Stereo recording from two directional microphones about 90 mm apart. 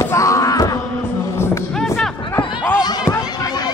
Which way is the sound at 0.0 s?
35° left (ahead or behind).